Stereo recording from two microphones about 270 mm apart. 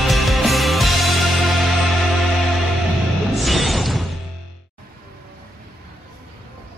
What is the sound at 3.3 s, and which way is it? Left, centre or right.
Music, centre.